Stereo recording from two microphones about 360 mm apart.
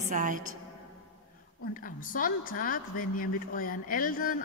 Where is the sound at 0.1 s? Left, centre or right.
Right.